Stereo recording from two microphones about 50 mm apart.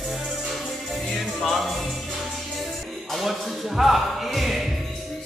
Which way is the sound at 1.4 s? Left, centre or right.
Centre.